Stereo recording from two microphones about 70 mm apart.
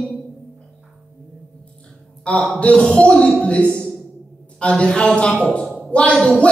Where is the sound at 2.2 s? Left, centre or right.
Centre.